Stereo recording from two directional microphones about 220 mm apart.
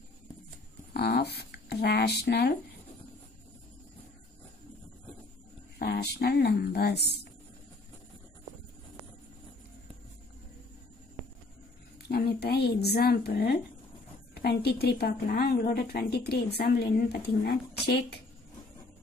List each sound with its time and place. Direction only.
0.9 s speech: 50° left (ahead or behind)
5.8 s speech: 45° left (ahead or behind)
12.1 s a woman's voice: 45° left (ahead or behind)